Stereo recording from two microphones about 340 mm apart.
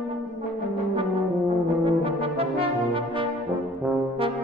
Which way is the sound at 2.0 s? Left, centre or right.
Centre.